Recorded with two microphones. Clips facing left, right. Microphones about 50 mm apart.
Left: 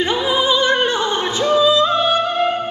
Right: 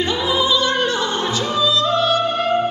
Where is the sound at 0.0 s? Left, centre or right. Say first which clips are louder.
Left 2 dB; left.